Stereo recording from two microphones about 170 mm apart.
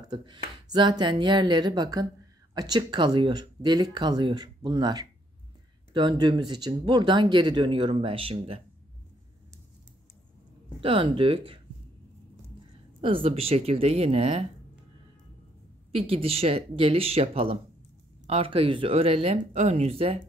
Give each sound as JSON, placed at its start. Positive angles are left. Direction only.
{"t": 0.0, "sound": "speech", "side_deg": -25}
{"t": 10.8, "sound": "speech", "side_deg": -30}
{"t": 13.0, "sound": "speech", "side_deg": -30}
{"t": 15.9, "sound": "speech", "side_deg": -35}